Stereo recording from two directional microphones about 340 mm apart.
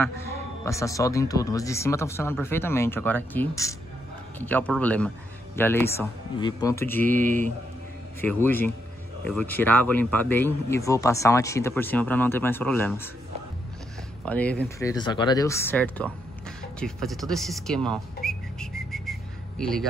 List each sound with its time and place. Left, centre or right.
0.0 s speech: centre
7.2 s speech: right
8.2 s speech: centre
14.2 s speech: centre